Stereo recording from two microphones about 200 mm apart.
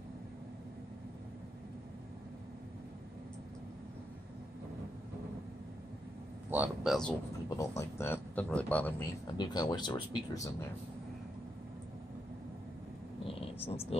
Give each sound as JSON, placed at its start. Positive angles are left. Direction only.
{"t": 6.5, "sound": "speech", "side_deg": -5}
{"t": 7.4, "sound": "speech", "side_deg": 15}
{"t": 9.4, "sound": "speech", "side_deg": 20}
{"t": 13.3, "sound": "a sound", "side_deg": 30}